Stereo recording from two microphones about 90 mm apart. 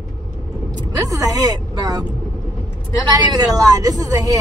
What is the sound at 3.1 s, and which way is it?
Speech, 45° right (ahead or behind).